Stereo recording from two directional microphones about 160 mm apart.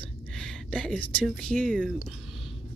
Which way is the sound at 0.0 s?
5° left (ahead or behind).